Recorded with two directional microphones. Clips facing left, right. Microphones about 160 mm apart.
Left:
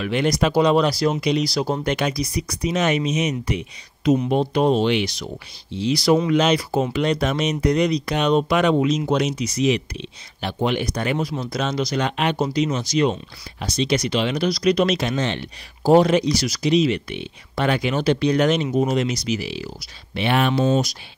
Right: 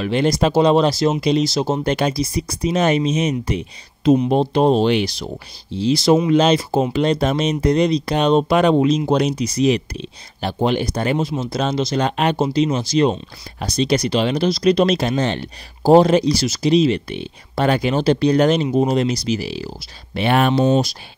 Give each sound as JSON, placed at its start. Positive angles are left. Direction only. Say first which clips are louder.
{"t": 0.0, "sound": "speech", "louder": "right 3 dB", "side_deg": -30}